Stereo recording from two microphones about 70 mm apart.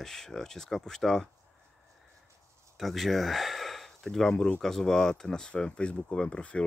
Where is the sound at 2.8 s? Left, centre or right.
Centre.